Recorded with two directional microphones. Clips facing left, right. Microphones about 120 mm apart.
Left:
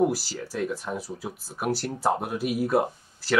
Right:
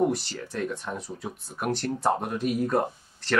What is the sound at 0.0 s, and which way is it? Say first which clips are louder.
Speech: left 1 dB; 5° left (ahead or behind).